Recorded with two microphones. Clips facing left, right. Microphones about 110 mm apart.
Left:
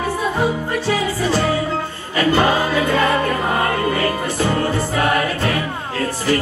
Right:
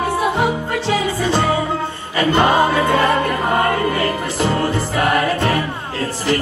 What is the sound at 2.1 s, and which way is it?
Music, 20° right (ahead or behind).